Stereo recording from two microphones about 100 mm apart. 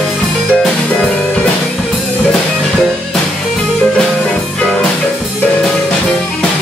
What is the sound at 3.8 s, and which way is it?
Music, 10° left (ahead or behind).